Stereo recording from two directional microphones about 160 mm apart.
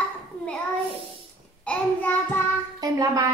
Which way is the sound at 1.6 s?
10° left (ahead or behind).